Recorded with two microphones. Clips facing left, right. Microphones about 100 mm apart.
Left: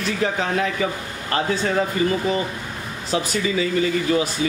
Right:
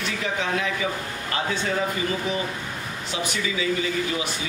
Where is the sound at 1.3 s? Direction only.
40° left (ahead or behind).